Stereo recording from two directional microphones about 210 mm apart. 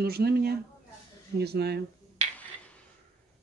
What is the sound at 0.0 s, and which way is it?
Speech, 50° right (ahead or behind).